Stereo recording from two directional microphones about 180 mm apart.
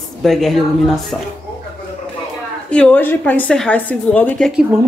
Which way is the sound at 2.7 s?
10° left (ahead or behind).